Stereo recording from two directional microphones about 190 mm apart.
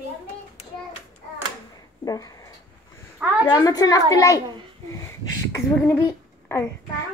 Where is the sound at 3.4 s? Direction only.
20° left (ahead or behind).